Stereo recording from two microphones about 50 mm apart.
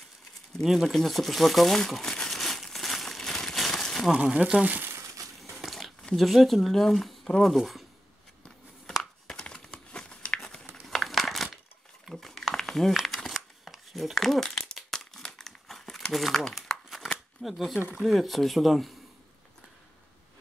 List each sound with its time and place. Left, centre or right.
0.6 s crumpling: centre
4.1 s speech: right
5.4 s biting: centre
6.1 s speech: centre
9.3 s crumpling: centre
12.1 s a sound: centre
14.1 s crumpling: centre
16.1 s speech: centre
16.5 s crumpling: centre
17.4 s speech: centre